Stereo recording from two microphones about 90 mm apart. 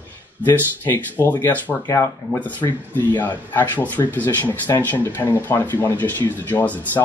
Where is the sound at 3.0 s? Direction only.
20° left (ahead or behind).